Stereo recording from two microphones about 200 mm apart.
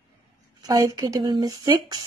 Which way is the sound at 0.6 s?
15° right (ahead or behind).